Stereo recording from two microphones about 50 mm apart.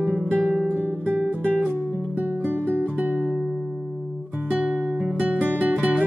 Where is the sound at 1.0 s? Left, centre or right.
Centre.